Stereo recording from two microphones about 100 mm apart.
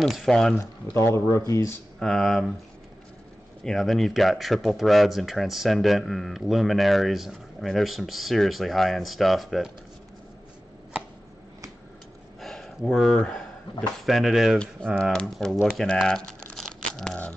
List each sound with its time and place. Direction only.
0.0 s speech: 5° left (ahead or behind)
0.9 s speech: 25° left (ahead or behind)
2.0 s speech: centre (ahead or behind)
3.6 s speech: centre (ahead or behind)
12.4 s a sound: centre (ahead or behind)
13.2 s speech: 10° left (ahead or behind)
15.1 s crumpling: 5° left (ahead or behind)